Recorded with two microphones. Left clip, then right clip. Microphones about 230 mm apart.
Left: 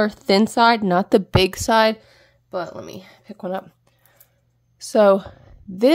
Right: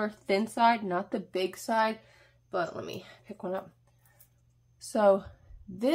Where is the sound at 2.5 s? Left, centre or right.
Left.